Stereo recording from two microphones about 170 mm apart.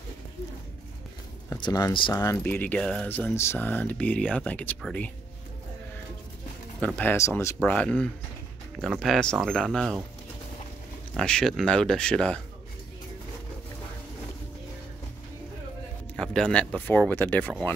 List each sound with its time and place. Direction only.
1.5 s speech: 20° left (ahead or behind)
6.8 s speech: 10° left (ahead or behind)
11.1 s speech: 5° left (ahead or behind)
16.2 s speech: 5° left (ahead or behind)